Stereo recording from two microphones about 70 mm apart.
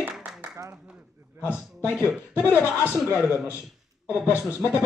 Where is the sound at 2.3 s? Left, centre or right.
Left.